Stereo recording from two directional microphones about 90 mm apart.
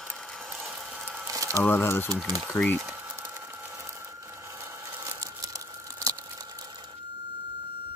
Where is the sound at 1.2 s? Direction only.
40° right (ahead or behind).